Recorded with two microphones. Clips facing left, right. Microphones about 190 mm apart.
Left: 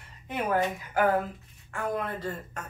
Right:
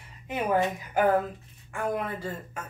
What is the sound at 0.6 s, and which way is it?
Speech, 25° right (ahead or behind).